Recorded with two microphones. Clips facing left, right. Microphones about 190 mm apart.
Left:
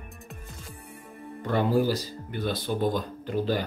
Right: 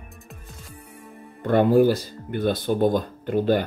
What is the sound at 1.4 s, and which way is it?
Speech, 55° right (ahead or behind).